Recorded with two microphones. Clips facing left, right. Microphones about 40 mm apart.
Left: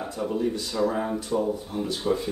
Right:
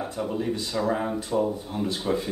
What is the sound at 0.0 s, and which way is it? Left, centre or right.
Speech, centre.